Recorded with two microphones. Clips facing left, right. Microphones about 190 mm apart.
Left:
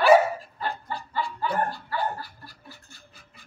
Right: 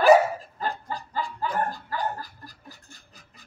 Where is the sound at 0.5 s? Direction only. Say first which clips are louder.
Right 1 dB; 40° right (ahead or behind).